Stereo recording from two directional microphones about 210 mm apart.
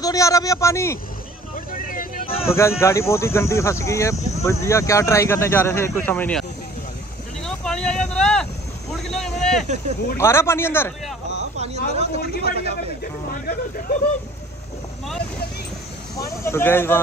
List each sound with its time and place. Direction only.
0.0 s speech: 15° left (ahead or behind)
1.7 s vehicle: 40° left (ahead or behind)
2.4 s speech: 15° left (ahead or behind)
7.4 s a sound: 5° left (ahead or behind)
9.0 s speech: centre (ahead or behind)
10.1 s speech: 10° left (ahead or behind)
11.5 s speech: 30° right (ahead or behind)
12.2 s speech: 50° left (ahead or behind)
16.4 s speech: 10° left (ahead or behind)